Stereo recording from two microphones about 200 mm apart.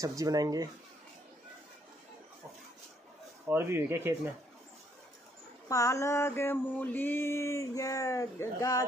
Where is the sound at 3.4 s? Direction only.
10° right (ahead or behind).